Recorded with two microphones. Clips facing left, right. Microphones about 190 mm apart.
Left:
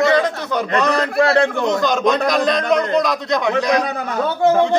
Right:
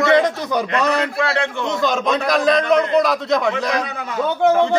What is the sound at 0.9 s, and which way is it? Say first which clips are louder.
Speech: left 3 dB; 35° left (ahead or behind).